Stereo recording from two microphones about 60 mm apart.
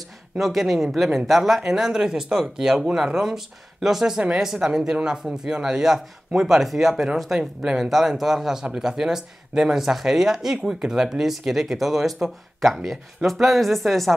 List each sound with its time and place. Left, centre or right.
0.4 s speech: centre